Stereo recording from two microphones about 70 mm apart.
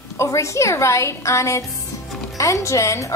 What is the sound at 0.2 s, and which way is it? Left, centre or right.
A woman's voice, left.